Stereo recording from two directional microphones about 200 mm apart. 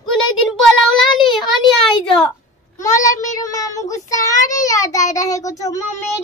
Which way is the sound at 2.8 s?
15° left (ahead or behind).